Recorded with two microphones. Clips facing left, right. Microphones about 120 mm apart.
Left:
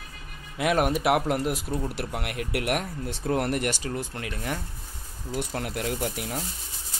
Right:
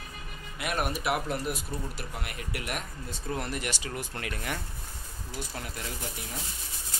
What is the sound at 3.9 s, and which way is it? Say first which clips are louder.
Speech: left 3 dB; 25° left (ahead or behind).